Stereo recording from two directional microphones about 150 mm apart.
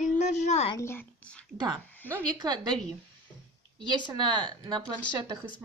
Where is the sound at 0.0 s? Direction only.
50° left (ahead or behind).